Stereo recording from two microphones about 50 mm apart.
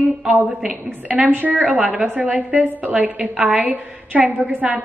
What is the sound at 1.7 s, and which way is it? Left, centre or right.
A woman's voice, right.